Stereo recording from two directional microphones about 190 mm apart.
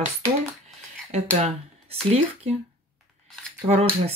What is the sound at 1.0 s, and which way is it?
Speech, 35° right (ahead or behind).